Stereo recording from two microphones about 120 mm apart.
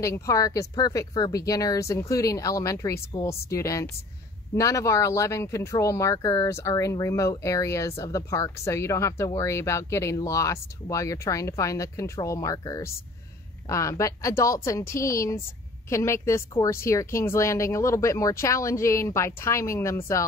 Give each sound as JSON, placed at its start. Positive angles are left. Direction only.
{"t": 0.0, "sound": "speech", "side_deg": 25}